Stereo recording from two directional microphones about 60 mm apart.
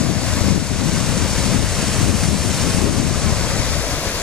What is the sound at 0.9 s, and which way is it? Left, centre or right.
Waves, centre.